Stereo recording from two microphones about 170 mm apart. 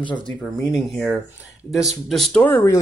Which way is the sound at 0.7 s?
Centre (ahead or behind).